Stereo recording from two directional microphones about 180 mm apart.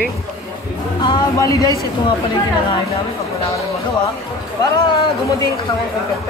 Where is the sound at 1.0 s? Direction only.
20° left (ahead or behind).